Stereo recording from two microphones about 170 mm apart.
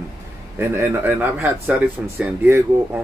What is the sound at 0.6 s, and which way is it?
Speech, 15° right (ahead or behind).